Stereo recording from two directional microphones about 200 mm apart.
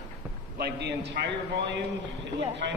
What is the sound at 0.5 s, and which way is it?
A man's voice, 55° right (ahead or behind).